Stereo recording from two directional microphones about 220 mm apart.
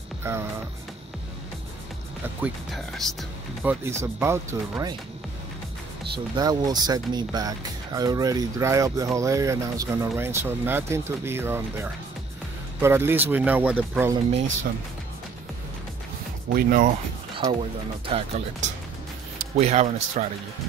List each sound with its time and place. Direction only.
0.2 s music: 10° right (ahead or behind)
2.4 s speech: centre (ahead or behind)
3.8 s speech: 10° right (ahead or behind)
6.1 s speech: 20° right (ahead or behind)
16.5 s speech: 40° right (ahead or behind)
17.4 s speech: 25° right (ahead or behind)